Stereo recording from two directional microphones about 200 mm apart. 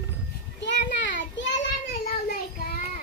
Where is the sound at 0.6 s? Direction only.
60° left (ahead or behind).